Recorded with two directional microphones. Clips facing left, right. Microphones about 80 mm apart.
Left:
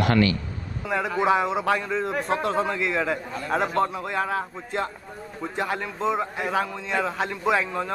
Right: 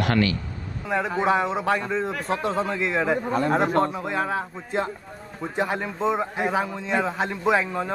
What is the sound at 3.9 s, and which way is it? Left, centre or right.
A man's voice, centre.